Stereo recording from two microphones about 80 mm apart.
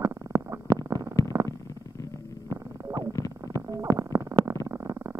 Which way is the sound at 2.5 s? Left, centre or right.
Right.